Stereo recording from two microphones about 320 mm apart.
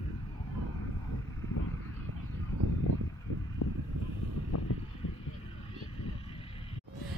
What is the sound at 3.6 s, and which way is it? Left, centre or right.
Vehicle, left.